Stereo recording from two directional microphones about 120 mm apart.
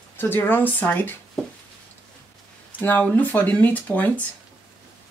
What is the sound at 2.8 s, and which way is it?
Speech, 15° left (ahead or behind).